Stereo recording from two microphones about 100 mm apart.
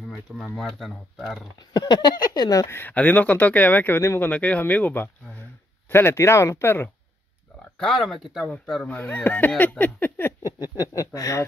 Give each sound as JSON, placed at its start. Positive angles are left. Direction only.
{"t": 0.4, "sound": "speech", "side_deg": 0}
{"t": 1.7, "sound": "speech", "side_deg": 45}
{"t": 2.7, "sound": "speech", "side_deg": 15}
{"t": 4.3, "sound": "speech", "side_deg": 15}
{"t": 7.7, "sound": "speech", "side_deg": 5}
{"t": 8.8, "sound": "speech", "side_deg": 20}
{"t": 11.1, "sound": "speech", "side_deg": 35}